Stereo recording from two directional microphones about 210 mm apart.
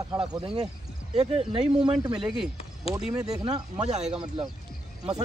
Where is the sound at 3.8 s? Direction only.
30° right (ahead or behind).